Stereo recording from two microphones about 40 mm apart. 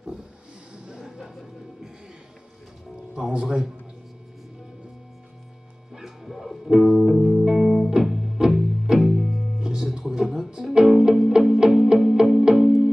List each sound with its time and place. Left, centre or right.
0.7 s music: centre
3.2 s speech: centre
5.9 s music: centre
9.6 s music: centre